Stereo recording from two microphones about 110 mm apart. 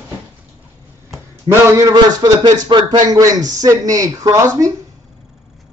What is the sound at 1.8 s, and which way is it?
A man's voice, 30° right (ahead or behind).